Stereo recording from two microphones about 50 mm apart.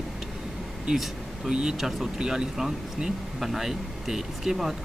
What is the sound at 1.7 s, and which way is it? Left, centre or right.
Speech, centre.